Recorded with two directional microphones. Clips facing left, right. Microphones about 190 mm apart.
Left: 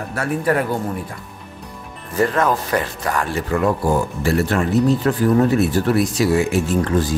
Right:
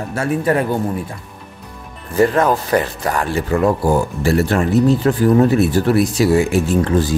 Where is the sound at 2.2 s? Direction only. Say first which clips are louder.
Right 4 dB; 30° right (ahead or behind).